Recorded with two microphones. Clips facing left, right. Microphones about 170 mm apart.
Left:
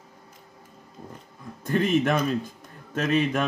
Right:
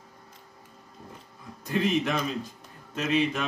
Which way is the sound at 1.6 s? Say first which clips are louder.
Left 3 dB; 50° left (ahead or behind).